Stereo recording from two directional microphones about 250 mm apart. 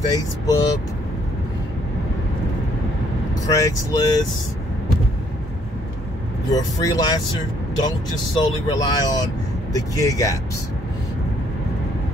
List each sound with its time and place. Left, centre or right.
0.1 s speech: centre
3.4 s speech: centre
6.5 s speech: centre